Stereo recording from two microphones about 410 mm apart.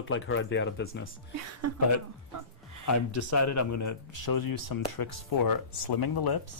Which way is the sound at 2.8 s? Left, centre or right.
Left.